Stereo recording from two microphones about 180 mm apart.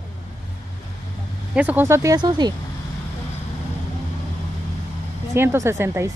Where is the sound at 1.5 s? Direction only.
10° right (ahead or behind).